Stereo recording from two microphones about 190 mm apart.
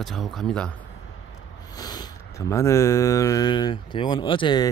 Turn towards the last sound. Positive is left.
turn(degrees=25)  # may be behind; listen again after turning